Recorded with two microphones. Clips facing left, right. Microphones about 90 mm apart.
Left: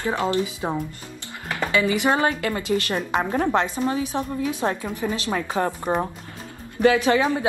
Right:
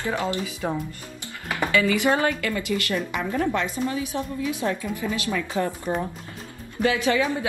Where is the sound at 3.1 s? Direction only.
45° left (ahead or behind).